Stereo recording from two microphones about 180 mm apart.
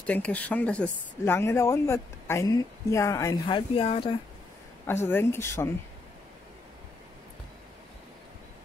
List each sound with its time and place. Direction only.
0.0 s speech: 10° left (ahead or behind); by 4.2 s 30° left (ahead or behind)
4.8 s speech: 10° left (ahead or behind)